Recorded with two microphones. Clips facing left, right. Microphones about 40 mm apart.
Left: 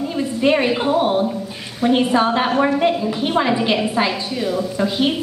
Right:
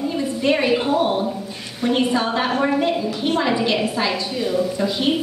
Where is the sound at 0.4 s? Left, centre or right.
Centre.